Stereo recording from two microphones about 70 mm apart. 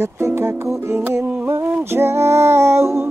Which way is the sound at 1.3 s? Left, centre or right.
Right.